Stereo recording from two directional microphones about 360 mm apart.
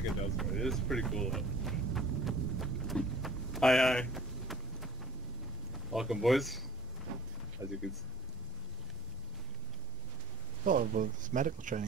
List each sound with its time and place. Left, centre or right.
0.4 s a sound: centre
5.9 s speech: centre
7.6 s speech: centre
10.6 s speech: right